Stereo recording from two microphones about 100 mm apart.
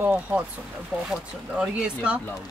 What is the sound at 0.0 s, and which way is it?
Speech, 20° right (ahead or behind).